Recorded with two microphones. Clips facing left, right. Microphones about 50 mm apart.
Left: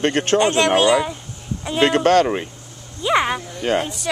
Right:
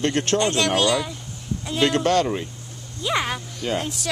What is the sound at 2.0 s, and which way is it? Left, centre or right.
Speech, left.